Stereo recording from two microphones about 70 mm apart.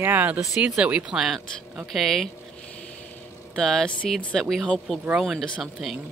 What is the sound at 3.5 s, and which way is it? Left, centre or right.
Speech, centre.